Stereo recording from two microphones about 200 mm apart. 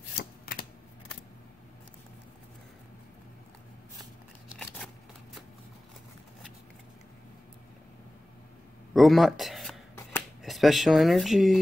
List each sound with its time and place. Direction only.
0.2 s shuffling cards: 45° left (ahead or behind)
4.6 s shuffling cards: centre (ahead or behind)
8.9 s speech: centre (ahead or behind)